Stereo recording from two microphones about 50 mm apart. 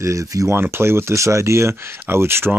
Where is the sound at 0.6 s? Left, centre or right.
Right.